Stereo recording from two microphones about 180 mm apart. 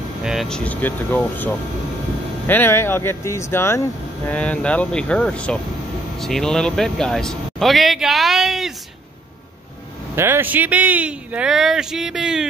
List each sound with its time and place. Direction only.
0.2 s speech: centre (ahead or behind)
10.1 s speech: 15° right (ahead or behind)